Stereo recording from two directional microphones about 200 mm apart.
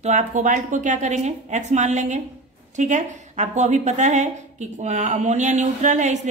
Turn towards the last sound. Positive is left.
turn(degrees=-35)  # may be behind; listen again after turning